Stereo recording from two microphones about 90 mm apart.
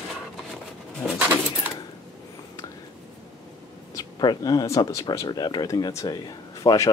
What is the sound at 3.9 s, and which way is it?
A man's voice, 45° left (ahead or behind).